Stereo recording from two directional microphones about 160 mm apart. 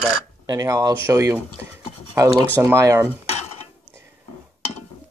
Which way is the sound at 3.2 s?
40° left (ahead or behind).